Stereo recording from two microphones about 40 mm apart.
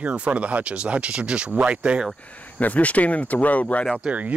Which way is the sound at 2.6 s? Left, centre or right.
Left.